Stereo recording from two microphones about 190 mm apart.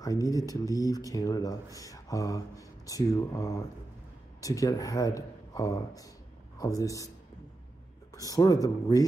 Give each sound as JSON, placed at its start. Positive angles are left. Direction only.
{"t": 0.0, "sound": "speech", "side_deg": 20}
{"t": 8.1, "sound": "speech", "side_deg": 20}